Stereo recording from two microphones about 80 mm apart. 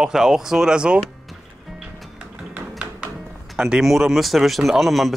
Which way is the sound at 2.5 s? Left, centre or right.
Centre.